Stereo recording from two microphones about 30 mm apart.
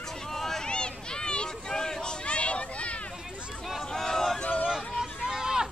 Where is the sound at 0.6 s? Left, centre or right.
Left.